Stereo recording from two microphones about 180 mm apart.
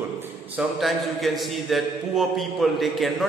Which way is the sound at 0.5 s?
Centre (ahead or behind).